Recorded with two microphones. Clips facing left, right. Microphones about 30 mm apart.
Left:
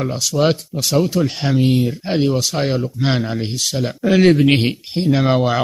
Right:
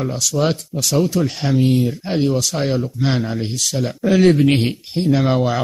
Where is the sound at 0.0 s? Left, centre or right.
Centre.